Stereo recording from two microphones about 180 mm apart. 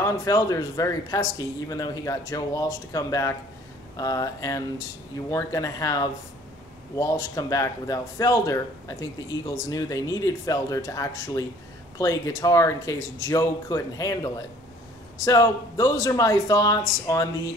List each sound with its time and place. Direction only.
0.0 s speech: 20° left (ahead or behind)